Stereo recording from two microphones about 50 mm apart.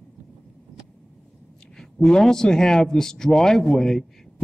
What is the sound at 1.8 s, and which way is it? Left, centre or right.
A man's voice, centre.